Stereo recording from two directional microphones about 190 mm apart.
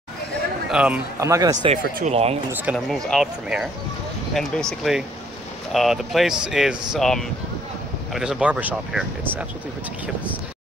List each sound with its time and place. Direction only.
0.7 s speech: 5° right (ahead or behind)
1.7 s speech: 35° right (ahead or behind)
2.6 s speech: centre (ahead or behind)